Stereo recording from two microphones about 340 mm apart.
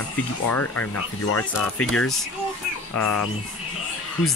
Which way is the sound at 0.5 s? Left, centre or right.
Left.